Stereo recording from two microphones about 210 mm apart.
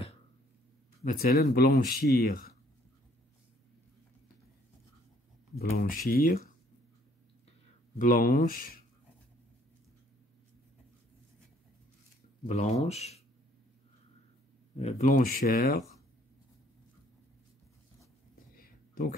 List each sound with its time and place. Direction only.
1.0 s speech: 45° left (ahead or behind)
5.7 s speech: 40° left (ahead or behind)
8.0 s speech: 40° left (ahead or behind)
12.4 s speech: 30° left (ahead or behind)
14.8 s speech: 30° left (ahead or behind)
18.5 s a sound: 45° left (ahead or behind)